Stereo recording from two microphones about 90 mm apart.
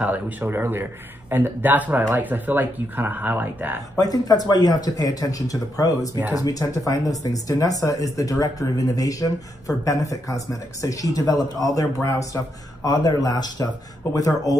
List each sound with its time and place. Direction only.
0.0 s speech: 20° right (ahead or behind)
3.9 s speech: 45° left (ahead or behind)